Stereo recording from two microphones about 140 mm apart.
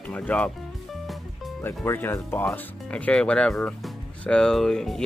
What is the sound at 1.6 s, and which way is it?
Speech, 15° left (ahead or behind).